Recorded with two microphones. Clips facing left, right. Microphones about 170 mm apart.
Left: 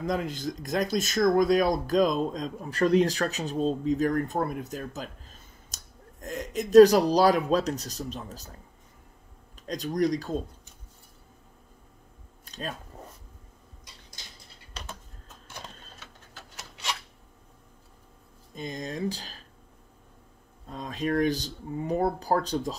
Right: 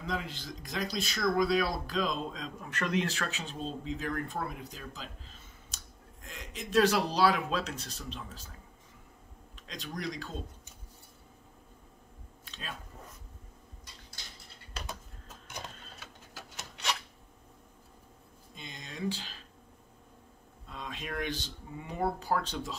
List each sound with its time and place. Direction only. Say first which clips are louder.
0.0 s speech: left 8 dB; 45° left (ahead or behind)
9.7 s speech: left 12 dB; 40° left (ahead or behind)
12.4 s a sound: left 8 dB; 40° left (ahead or behind)
14.7 s typing: even; 5° right (ahead or behind)
18.5 s speech: left 12 dB; 45° left (ahead or behind)
20.6 s speech: left 10 dB; 40° left (ahead or behind)